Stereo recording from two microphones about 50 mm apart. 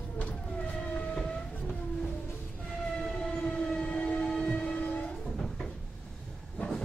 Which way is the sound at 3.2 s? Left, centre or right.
Centre.